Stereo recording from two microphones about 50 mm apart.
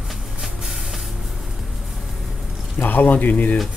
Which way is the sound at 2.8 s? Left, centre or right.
Left.